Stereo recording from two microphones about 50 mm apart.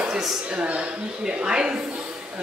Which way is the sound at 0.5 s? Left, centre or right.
Right.